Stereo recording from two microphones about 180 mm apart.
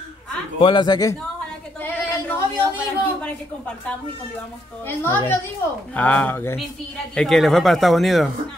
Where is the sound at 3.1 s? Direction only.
5° left (ahead or behind).